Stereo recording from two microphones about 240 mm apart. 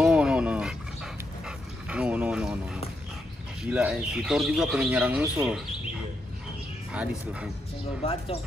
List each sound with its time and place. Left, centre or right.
0.0 s dog: centre
1.9 s a sound: centre
3.6 s speech: centre
6.9 s speech: centre
8.0 s speech: left